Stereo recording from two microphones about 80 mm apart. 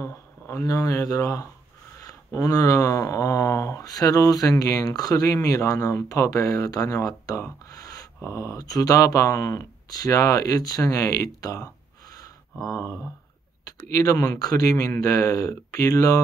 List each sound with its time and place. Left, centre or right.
0.0 s speech: left
7.6 s a sound: left
8.3 s speech: left
11.4 s gasp: left
12.6 s speech: left